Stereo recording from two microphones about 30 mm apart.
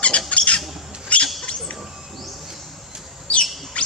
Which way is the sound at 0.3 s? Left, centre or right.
Left.